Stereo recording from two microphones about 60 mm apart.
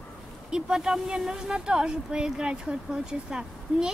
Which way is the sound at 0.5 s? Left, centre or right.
Centre.